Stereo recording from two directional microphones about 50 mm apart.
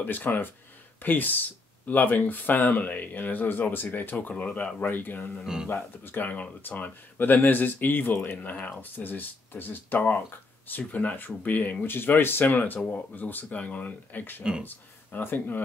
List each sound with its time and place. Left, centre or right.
0.0 s speech: left
4.3 s speech: left
4.7 s speech: left
5.4 s speech: centre
5.7 s speech: left
8.4 s speech: left
8.9 s speech: left
12.4 s speech: left